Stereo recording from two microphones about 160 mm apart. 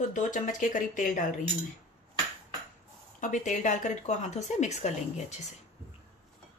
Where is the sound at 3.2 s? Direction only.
50° left (ahead or behind).